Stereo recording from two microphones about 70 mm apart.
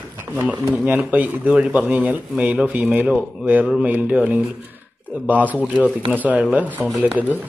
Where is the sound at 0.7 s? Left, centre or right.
Right.